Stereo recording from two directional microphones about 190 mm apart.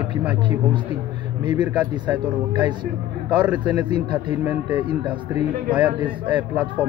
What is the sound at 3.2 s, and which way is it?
Speech, 10° right (ahead or behind).